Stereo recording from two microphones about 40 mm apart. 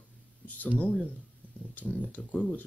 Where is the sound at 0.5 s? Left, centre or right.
Left.